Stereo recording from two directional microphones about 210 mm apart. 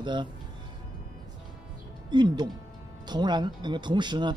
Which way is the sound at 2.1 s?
20° right (ahead or behind).